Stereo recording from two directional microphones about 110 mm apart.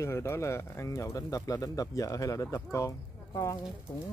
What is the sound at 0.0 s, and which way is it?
Speech, 25° left (ahead or behind).